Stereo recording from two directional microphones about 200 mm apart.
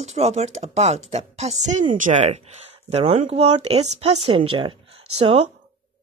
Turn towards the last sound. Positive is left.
turn(degrees=-30)  # may be behind; listen again after turning